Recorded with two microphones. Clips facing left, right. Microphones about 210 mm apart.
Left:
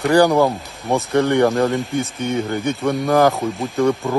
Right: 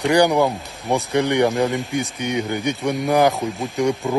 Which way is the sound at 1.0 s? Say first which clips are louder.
Left 3 dB; 15° right (ahead or behind).